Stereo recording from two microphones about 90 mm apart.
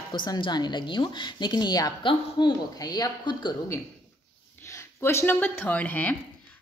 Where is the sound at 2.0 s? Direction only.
60° left (ahead or behind).